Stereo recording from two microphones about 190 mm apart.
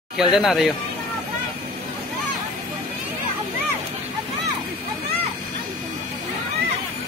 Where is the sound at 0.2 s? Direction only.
Centre (ahead or behind).